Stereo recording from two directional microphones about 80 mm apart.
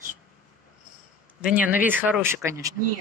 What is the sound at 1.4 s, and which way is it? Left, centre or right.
Speech, centre.